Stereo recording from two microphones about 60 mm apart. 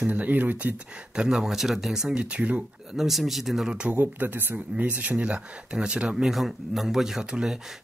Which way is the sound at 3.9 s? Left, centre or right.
Right.